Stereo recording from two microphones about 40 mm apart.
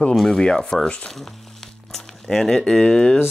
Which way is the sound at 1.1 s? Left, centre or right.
Centre.